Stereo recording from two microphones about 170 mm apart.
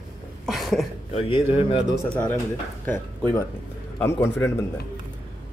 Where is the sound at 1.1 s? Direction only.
35° left (ahead or behind).